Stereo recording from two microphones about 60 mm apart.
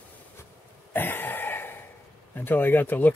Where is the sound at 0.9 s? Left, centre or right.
Left.